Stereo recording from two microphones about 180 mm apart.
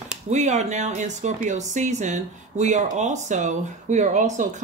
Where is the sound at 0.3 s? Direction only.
40° right (ahead or behind).